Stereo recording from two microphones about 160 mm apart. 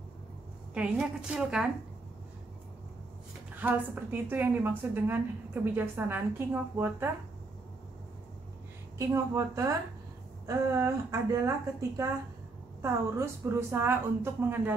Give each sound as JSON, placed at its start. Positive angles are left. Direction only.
{"t": 0.7, "sound": "a woman's voice", "side_deg": -5}
{"t": 3.5, "sound": "a woman's voice", "side_deg": -10}
{"t": 8.9, "sound": "speech", "side_deg": -20}
{"t": 12.8, "sound": "a woman's voice", "side_deg": -15}